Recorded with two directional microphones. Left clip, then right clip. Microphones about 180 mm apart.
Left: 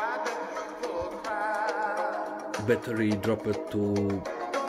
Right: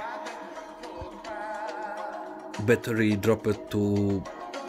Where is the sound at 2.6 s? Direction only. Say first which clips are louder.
Right 3 dB; 30° right (ahead or behind).